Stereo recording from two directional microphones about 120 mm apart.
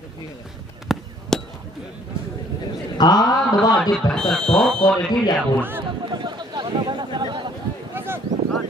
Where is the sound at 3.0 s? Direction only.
35° left (ahead or behind).